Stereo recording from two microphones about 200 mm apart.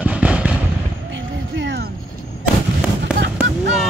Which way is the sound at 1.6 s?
60° right (ahead or behind).